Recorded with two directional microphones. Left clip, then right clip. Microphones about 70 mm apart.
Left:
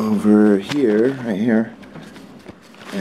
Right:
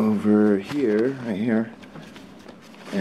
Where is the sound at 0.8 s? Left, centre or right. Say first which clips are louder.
Left 6 dB; left.